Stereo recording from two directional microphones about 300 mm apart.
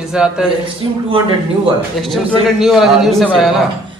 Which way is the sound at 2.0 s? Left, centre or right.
Centre.